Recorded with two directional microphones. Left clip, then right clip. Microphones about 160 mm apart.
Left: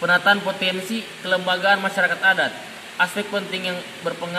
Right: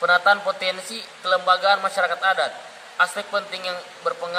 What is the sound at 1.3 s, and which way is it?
A man's voice, 5° right (ahead or behind).